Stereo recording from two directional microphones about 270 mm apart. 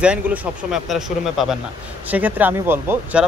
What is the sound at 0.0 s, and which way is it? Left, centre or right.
Speech, centre.